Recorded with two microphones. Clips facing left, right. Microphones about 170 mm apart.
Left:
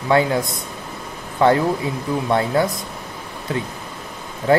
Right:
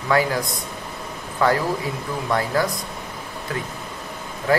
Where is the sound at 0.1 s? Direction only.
25° left (ahead or behind).